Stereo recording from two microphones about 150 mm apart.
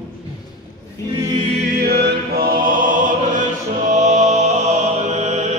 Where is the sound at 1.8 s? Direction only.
90° right.